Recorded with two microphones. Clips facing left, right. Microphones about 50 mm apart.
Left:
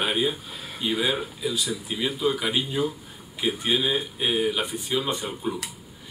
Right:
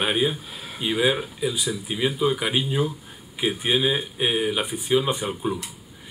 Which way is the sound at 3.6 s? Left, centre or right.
Centre.